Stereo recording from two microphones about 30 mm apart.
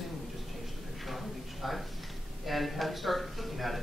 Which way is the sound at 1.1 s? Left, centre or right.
Centre.